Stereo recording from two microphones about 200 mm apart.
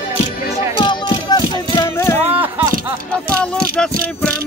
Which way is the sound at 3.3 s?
5° left (ahead or behind).